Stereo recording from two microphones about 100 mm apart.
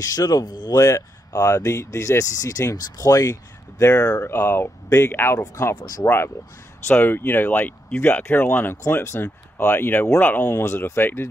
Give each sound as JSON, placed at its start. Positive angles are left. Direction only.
{"t": 0.0, "sound": "speech", "side_deg": 40}
{"t": 4.2, "sound": "speech", "side_deg": 20}
{"t": 5.8, "sound": "speech", "side_deg": 40}
{"t": 6.0, "sound": "speech", "side_deg": 25}
{"t": 10.6, "sound": "speech", "side_deg": 30}